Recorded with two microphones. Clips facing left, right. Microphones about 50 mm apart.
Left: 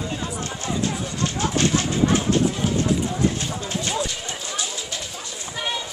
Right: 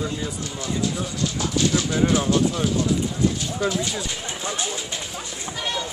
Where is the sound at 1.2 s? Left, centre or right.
Left.